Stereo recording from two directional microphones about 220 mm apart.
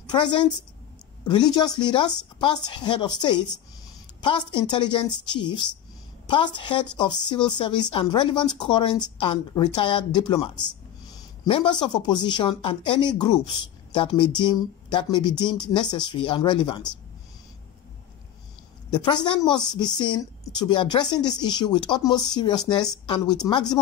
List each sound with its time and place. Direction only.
0.0 s a woman's voice: 20° left (ahead or behind)
18.9 s speech: 20° left (ahead or behind)